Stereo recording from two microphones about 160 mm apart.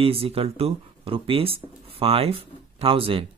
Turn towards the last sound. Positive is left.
turn(degrees=-35)  # may be behind; listen again after turning